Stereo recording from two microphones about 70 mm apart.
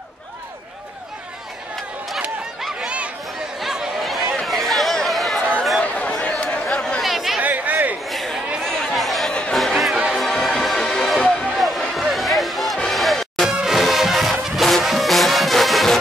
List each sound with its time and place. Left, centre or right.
3.5 s a sound: centre
4.4 s chatter: centre
5.8 s chatter: centre
7.0 s chatter: centre
7.3 s a sound: right
8.1 s chatter: centre
9.3 s music: centre
9.6 s music: centre
13.5 s music: centre